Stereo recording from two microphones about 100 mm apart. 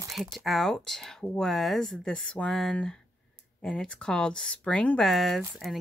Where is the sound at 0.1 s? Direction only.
Centre (ahead or behind).